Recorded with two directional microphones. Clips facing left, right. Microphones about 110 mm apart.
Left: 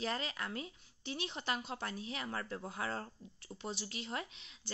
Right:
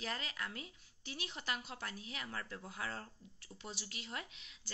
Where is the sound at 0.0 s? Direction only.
30° left (ahead or behind).